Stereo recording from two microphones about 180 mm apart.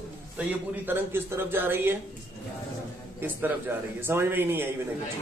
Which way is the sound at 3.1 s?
10° right (ahead or behind).